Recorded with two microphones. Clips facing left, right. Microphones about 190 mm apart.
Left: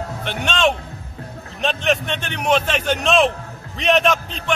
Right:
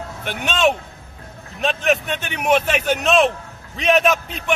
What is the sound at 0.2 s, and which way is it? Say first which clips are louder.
A man's voice: right 1 dB; 5° right (ahead or behind).